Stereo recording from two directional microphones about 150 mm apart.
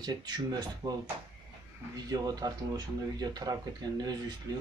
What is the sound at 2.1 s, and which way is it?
Speech, 25° right (ahead or behind).